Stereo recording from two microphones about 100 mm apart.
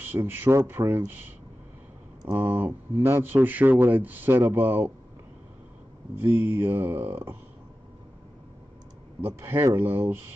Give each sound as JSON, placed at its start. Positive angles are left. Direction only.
{"t": 0.0, "sound": "a man's voice", "side_deg": -20}
{"t": 2.3, "sound": "a man's voice", "side_deg": -20}
{"t": 6.1, "sound": "a man's voice", "side_deg": -25}
{"t": 9.2, "sound": "a man's voice", "side_deg": -25}